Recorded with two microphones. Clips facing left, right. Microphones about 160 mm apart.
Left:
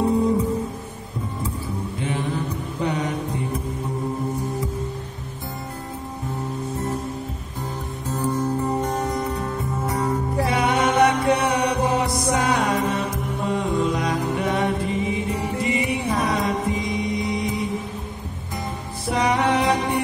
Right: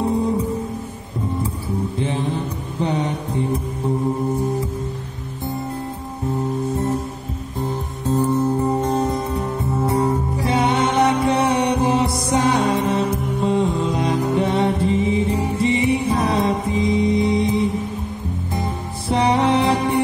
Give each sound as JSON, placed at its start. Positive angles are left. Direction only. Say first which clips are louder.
{"t": 2.0, "sound": "mantra", "louder": "even", "side_deg": -30}
{"t": 8.1, "sound": "music", "louder": "right 5 dB", "side_deg": -30}
{"t": 19.0, "sound": "music", "louder": "right 3 dB", "side_deg": -30}